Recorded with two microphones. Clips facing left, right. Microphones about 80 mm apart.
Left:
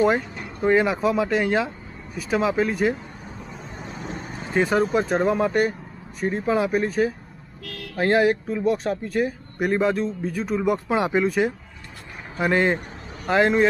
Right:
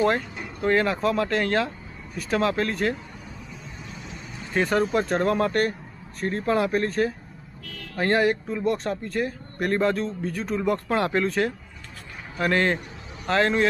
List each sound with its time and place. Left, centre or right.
0.0 s speech: centre
3.7 s vehicle: left
4.6 s speech: centre